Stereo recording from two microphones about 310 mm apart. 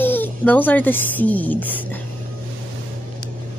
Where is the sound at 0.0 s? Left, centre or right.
Centre.